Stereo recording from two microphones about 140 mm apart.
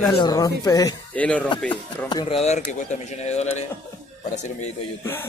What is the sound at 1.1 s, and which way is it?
Speech, 10° left (ahead or behind).